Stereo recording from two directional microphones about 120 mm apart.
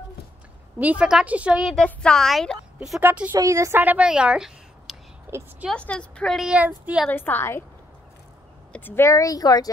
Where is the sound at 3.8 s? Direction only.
10° right (ahead or behind).